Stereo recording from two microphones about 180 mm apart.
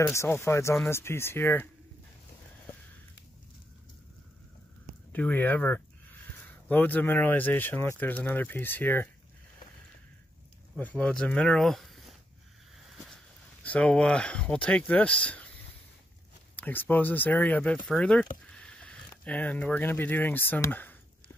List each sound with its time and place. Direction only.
0.0 s speech: 15° left (ahead or behind)
5.1 s speech: 10° left (ahead or behind)
10.8 s speech: 10° left (ahead or behind)
13.7 s speech: 5° left (ahead or behind)
16.5 s speech: 10° left (ahead or behind)